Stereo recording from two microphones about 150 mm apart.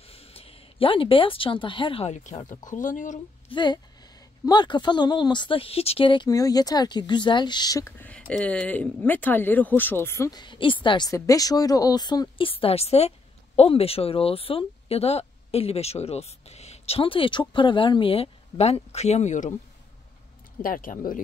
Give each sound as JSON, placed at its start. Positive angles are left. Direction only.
{"t": 0.0, "sound": "speech", "side_deg": 40}
{"t": 2.0, "sound": "speech", "side_deg": 55}
{"t": 3.4, "sound": "a woman's voice", "side_deg": 30}
{"t": 8.0, "sound": "speech", "side_deg": 10}
{"t": 10.4, "sound": "a woman's voice", "side_deg": 35}
{"t": 20.6, "sound": "speech", "side_deg": 65}